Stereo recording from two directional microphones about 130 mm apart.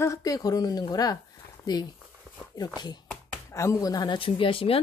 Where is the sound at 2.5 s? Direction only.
35° left (ahead or behind).